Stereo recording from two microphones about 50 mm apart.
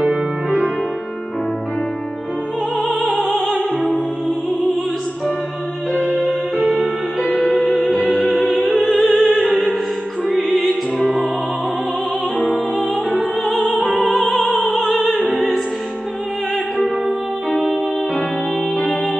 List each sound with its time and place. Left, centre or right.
6.1 s music: centre
8.1 s opera: centre
10.2 s music: centre
13.7 s opera: centre
17.6 s music: left